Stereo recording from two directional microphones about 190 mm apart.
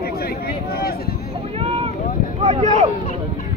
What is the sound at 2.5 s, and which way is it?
Speech, 35° right (ahead or behind).